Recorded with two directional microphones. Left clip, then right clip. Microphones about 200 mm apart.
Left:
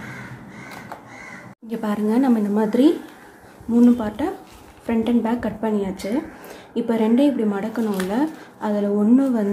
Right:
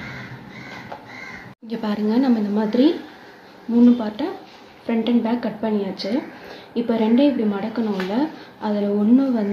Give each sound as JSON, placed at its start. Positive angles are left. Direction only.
{"t": 1.7, "sound": "speech", "side_deg": 15}